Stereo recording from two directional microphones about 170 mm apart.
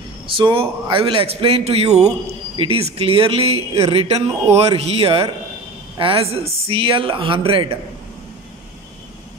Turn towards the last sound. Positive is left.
turn(degrees=-30)  # may be behind; listen again after turning